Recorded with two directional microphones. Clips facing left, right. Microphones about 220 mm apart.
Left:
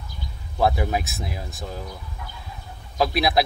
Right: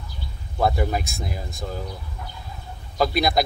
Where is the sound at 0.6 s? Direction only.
Centre (ahead or behind).